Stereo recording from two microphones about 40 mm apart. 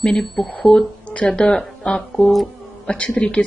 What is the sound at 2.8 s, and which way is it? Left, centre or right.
Speech, left.